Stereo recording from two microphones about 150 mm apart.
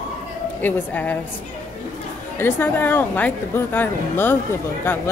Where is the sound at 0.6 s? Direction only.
10° left (ahead or behind).